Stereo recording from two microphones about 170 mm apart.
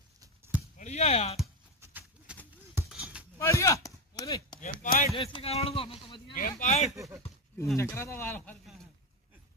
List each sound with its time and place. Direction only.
0.7 s speech: 40° left (ahead or behind)
1.8 s a sound: 10° right (ahead or behind)
3.3 s a sound: 15° left (ahead or behind)
4.6 s speech: 50° left (ahead or behind)
5.1 s speech: 30° left (ahead or behind)
6.6 s speech: 40° left (ahead or behind)
7.7 s speech: 15° left (ahead or behind)